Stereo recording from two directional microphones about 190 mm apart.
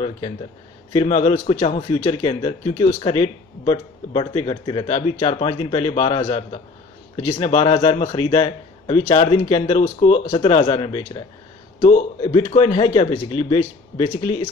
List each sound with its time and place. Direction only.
0.9 s a man's voice: 35° left (ahead or behind)